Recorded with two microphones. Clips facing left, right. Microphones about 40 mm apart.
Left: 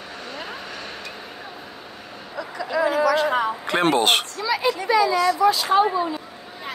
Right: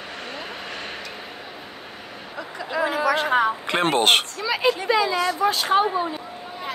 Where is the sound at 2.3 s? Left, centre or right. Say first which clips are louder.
Left 3 dB; right.